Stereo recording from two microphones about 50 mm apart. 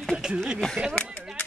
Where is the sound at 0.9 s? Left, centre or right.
Left.